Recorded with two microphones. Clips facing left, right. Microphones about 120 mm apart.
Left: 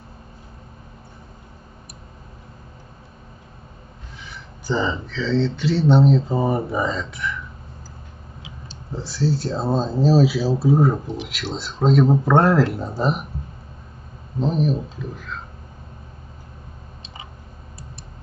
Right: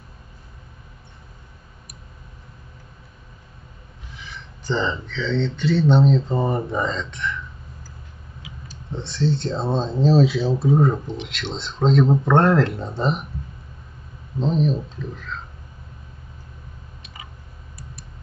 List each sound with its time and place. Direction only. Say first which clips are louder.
4.6 s speech: left 1 dB; 5° left (ahead or behind)
8.4 s tick-tock: even; 25° left (ahead or behind)
8.9 s speech: even; 5° left (ahead or behind)
14.4 s speech: even; 5° left (ahead or behind)